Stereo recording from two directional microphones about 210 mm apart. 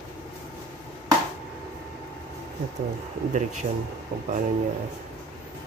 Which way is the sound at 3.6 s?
35° right (ahead or behind).